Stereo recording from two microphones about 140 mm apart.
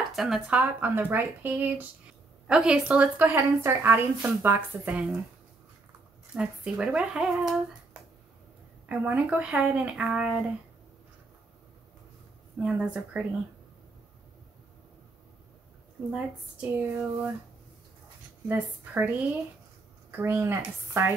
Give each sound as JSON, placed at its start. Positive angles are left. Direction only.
{"t": 0.1, "sound": "a woman's voice", "side_deg": 0}
{"t": 6.3, "sound": "a woman's voice", "side_deg": -5}
{"t": 12.5, "sound": "a woman's voice", "side_deg": -10}
{"t": 16.7, "sound": "a woman's voice", "side_deg": -15}
{"t": 18.5, "sound": "a woman's voice", "side_deg": -10}